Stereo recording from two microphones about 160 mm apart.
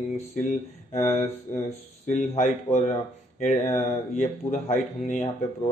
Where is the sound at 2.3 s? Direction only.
45° left (ahead or behind).